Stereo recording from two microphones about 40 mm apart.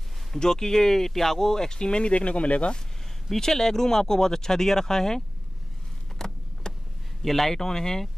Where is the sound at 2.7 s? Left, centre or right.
Centre.